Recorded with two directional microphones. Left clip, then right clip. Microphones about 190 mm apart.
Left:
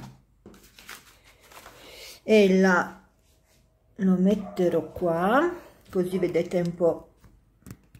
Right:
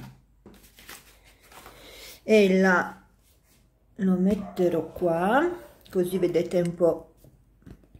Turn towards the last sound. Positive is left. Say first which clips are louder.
# right 1 dB
turn(degrees=-5)  # may be behind; listen again after turning